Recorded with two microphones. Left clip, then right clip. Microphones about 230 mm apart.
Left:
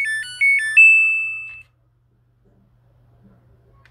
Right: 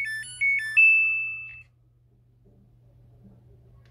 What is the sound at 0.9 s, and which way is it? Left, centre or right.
Music, left.